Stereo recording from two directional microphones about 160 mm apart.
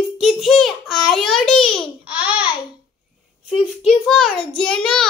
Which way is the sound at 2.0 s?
5° right (ahead or behind).